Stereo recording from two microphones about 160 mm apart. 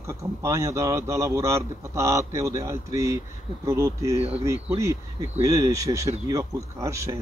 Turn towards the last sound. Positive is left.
turn(degrees=-20)  # may be behind; listen again after turning